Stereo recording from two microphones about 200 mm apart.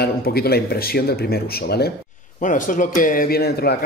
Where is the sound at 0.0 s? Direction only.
50° left (ahead or behind).